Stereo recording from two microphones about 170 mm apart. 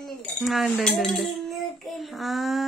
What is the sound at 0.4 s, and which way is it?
A child's voice, centre (ahead or behind).